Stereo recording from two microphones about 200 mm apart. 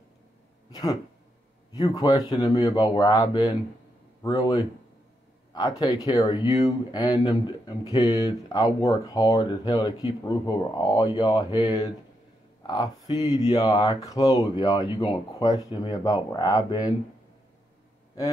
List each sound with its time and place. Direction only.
0.7 s speech: 20° left (ahead or behind)